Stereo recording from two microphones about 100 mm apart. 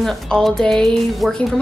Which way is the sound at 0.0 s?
Centre (ahead or behind).